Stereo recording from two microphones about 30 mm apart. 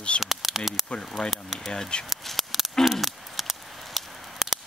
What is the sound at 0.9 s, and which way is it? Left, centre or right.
Speech, left.